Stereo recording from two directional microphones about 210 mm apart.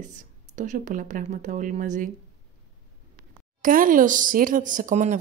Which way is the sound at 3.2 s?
40° right (ahead or behind).